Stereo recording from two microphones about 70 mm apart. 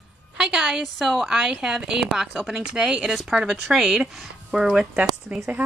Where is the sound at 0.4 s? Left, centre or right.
Centre.